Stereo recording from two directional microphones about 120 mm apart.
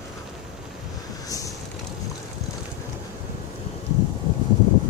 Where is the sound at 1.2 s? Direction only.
30° left (ahead or behind).